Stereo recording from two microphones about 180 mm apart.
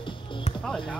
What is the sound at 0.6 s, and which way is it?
Music, 5° left (ahead or behind).